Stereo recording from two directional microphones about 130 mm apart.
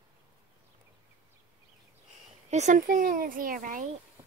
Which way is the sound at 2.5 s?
70° right (ahead or behind).